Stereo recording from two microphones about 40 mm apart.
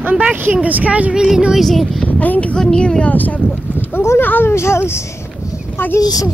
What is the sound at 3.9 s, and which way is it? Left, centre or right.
Speech, left.